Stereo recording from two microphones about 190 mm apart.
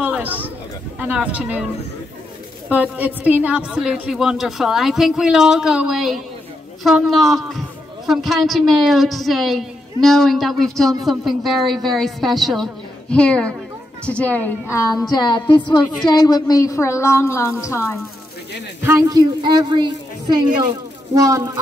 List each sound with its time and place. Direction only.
0.0 s a sound: 5° right (ahead or behind)
0.9 s speech: 5° right (ahead or behind)
2.7 s a woman's voice: 10° right (ahead or behind); by 17.9 s 15° left (ahead or behind)
18.9 s a woman's voice: 20° right (ahead or behind)